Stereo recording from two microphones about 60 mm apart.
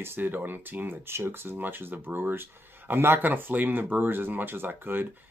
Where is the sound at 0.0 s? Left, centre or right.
Right.